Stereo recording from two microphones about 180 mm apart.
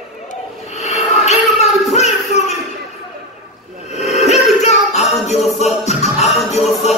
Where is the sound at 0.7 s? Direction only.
40° left (ahead or behind).